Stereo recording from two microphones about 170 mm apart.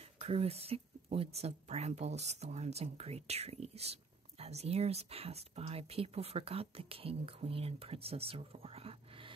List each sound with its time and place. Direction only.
0.2 s speech: 35° right (ahead or behind)